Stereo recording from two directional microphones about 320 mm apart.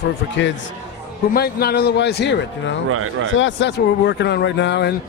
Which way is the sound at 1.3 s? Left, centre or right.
Left.